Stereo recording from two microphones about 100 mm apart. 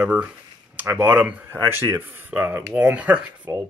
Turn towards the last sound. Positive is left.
turn(degrees=-15)  # may be behind; listen again after turning